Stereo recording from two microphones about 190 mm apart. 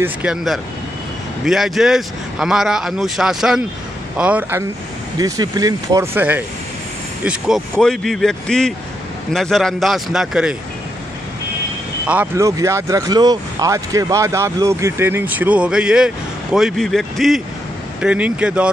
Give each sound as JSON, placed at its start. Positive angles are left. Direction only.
{"t": 0.0, "sound": "speech", "side_deg": -5}
{"t": 12.1, "sound": "speech", "side_deg": -10}